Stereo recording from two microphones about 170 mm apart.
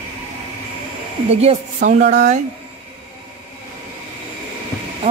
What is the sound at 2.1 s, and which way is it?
Speech, 45° right (ahead or behind).